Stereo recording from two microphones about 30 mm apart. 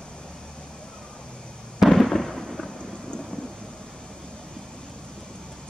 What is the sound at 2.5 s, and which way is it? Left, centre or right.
Thunder, centre.